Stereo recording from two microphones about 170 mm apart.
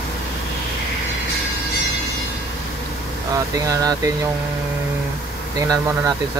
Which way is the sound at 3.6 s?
20° right (ahead or behind).